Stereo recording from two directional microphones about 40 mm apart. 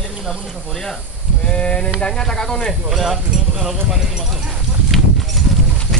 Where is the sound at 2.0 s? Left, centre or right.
Centre.